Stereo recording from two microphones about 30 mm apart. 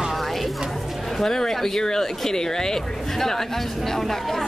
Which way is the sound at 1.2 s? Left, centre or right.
Centre.